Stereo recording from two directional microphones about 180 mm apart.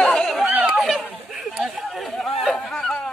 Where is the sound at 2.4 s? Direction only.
Centre (ahead or behind).